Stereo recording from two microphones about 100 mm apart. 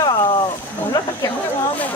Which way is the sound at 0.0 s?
40° left (ahead or behind).